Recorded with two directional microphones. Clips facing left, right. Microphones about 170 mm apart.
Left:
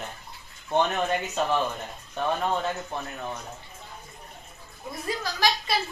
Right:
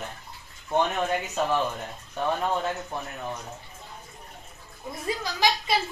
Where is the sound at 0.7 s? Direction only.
5° right (ahead or behind).